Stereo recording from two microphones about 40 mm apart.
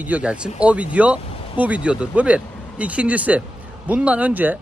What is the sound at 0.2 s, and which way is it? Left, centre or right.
Speech, right.